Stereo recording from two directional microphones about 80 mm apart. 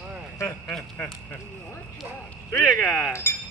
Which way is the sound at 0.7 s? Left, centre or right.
Centre.